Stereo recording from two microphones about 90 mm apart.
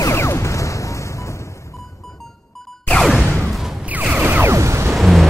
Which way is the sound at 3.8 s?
15° right (ahead or behind).